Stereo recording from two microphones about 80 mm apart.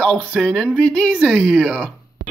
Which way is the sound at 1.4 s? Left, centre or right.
Centre.